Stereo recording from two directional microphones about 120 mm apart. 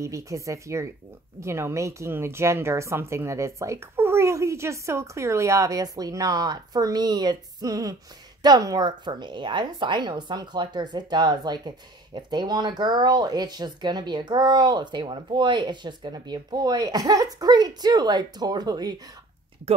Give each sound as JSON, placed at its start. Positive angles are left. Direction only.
{"t": 0.0, "sound": "a woman's voice", "side_deg": -25}